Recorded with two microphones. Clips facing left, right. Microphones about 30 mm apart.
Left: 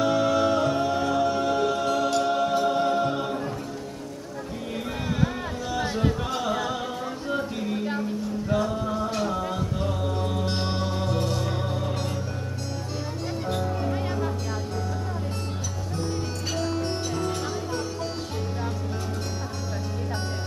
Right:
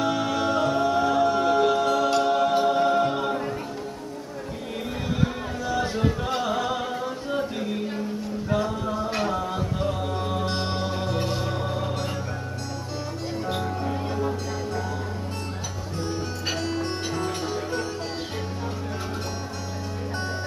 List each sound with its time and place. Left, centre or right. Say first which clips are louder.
0.0 s music: left 3 dB; centre
2.2 s a capella: right 2 dB; centre
5.9 s music: right 1 dB; centre
7.2 s a sound: left 1 dB; centre
8.5 s music: even; centre
9.1 s music: right 1 dB; right
9.4 s music: right 1 dB; centre
11.1 s music: even; right
11.4 s music: right 1 dB; centre
13.5 s music: left 1 dB; right
16.5 s music: left 2 dB; centre